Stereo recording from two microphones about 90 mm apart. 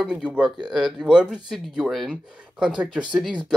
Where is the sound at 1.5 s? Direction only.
Centre (ahead or behind).